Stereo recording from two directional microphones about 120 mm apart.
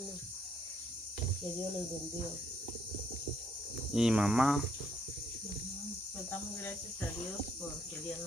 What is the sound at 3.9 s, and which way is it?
Cricket, 5° right (ahead or behind).